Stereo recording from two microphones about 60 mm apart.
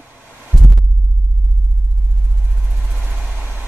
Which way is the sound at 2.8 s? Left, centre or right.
Right.